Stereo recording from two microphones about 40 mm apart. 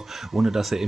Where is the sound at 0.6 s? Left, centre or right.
Centre.